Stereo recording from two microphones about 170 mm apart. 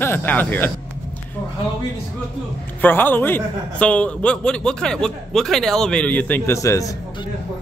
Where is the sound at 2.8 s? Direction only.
10° left (ahead or behind).